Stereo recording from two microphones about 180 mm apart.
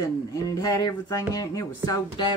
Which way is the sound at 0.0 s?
20° left (ahead or behind).